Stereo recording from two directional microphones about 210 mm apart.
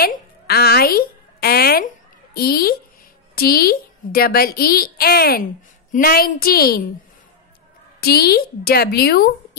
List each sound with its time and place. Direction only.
0.0 s a sound: 45° left (ahead or behind)
3.3 s a woman's voice: 45° left (ahead or behind)
8.0 s a woman's voice: 50° left (ahead or behind)